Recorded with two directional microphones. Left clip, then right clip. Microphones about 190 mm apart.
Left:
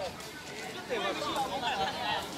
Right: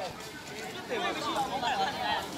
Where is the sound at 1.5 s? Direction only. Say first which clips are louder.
Right 2 dB; 15° right (ahead or behind).